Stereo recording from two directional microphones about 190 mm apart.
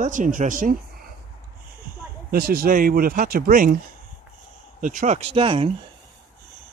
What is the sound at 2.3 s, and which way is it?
Speech, 50° right (ahead or behind).